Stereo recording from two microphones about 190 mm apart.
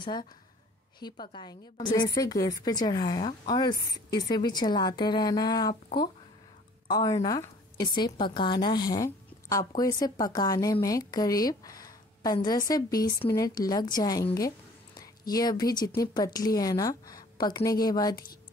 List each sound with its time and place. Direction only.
0.0 s a woman's voice: 25° left (ahead or behind)
6.9 s a woman's voice: 20° left (ahead or behind)